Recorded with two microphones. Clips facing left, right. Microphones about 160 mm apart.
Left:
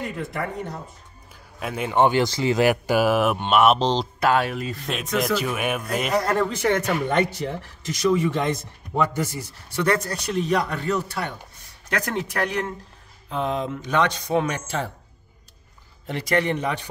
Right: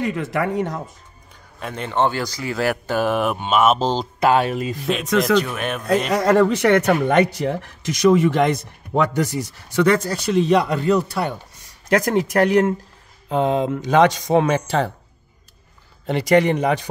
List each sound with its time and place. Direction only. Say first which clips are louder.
0.0 s speech: right 7 dB; 90° right
1.3 s speech: left 1 dB; 5° left (ahead or behind)
4.2 s speech: right 6 dB; 20° right (ahead or behind)
5.1 s speech: right 5 dB; 5° left (ahead or behind)
6.1 s speech: right 6 dB; 80° right
16.1 s speech: right 7 dB; 90° right